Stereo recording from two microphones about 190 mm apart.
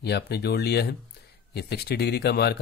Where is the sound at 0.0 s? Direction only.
60° left (ahead or behind).